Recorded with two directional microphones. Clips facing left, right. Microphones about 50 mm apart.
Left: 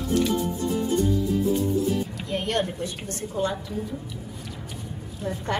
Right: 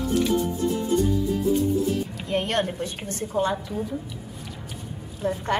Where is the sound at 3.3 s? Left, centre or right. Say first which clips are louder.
Right 3 dB; right.